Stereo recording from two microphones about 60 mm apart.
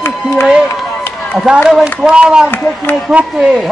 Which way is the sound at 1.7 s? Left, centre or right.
Centre.